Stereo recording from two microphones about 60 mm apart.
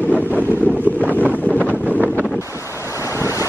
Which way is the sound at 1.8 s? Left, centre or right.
Left.